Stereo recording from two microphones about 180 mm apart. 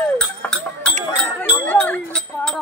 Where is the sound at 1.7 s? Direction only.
10° left (ahead or behind).